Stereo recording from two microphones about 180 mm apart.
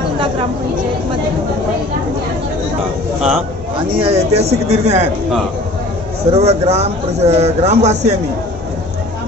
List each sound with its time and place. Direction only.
3.7 s speech: 35° right (ahead or behind)
6.3 s speech: 35° right (ahead or behind)